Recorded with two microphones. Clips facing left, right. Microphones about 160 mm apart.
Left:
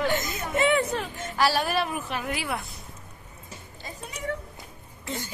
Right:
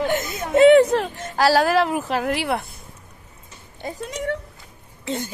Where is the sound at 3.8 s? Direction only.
90° right.